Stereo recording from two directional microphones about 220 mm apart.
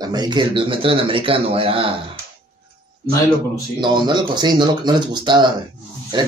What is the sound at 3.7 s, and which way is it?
A man's voice, 20° right (ahead or behind).